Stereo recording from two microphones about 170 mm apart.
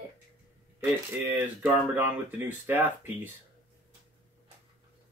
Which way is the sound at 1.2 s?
10° right (ahead or behind).